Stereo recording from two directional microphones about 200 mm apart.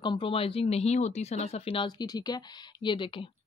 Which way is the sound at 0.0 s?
25° left (ahead or behind).